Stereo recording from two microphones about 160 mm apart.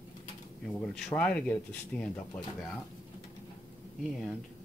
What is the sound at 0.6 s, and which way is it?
Speech, centre (ahead or behind).